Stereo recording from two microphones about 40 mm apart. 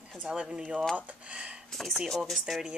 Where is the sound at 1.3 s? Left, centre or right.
Right.